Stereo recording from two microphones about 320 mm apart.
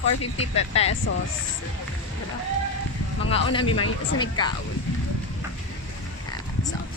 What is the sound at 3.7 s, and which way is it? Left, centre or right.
Speech, left.